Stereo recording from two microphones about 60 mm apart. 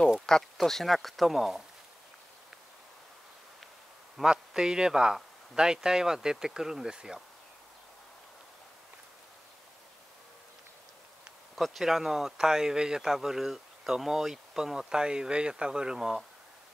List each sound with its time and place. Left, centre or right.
0.3 s speech: centre
4.2 s speech: centre
11.5 s speech: centre